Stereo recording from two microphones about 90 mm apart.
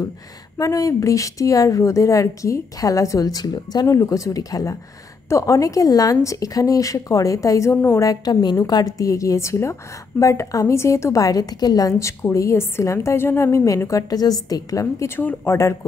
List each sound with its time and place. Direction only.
0.6 s a woman's voice: 40° left (ahead or behind)